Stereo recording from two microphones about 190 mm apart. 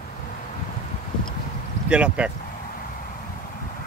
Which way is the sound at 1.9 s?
5° right (ahead or behind).